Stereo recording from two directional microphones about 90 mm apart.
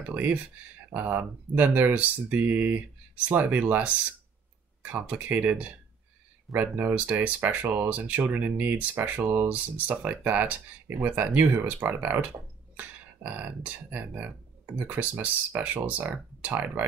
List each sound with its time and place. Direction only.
0.1 s speech: 20° right (ahead or behind)
4.9 s speech: 15° right (ahead or behind)